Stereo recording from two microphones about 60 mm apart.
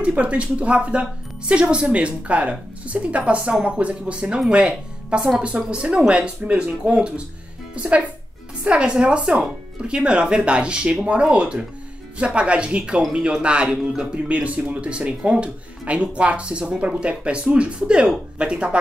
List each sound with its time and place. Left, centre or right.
0.0 s speech: right